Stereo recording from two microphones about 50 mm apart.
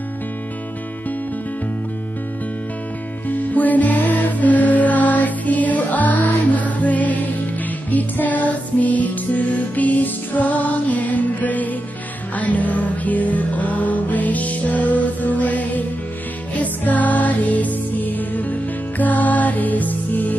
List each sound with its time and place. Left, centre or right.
3.3 s music: left